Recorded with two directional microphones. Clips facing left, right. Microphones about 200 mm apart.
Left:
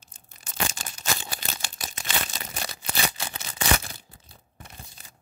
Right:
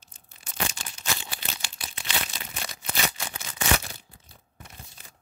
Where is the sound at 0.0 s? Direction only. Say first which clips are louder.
Left 1 dB; 45° left (ahead or behind).